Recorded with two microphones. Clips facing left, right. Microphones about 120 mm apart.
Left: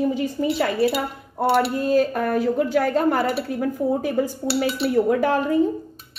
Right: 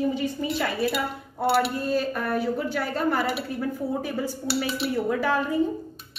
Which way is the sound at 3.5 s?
45° left (ahead or behind).